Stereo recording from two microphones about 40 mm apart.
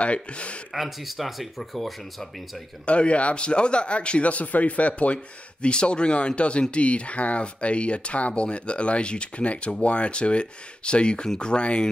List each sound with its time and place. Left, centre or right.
0.0 s speech: left
0.7 s speech: centre
2.8 s speech: left